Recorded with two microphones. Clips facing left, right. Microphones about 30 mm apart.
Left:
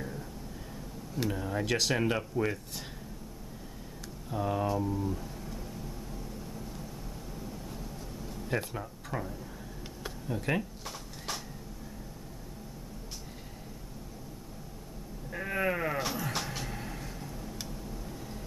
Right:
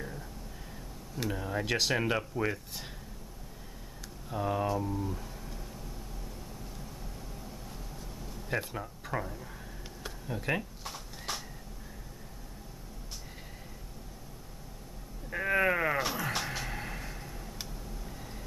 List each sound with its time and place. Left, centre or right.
1.1 s speech: centre
4.3 s speech: centre
8.5 s speech: centre
10.0 s a sound: centre
15.3 s sheep: centre
16.4 s a sound: centre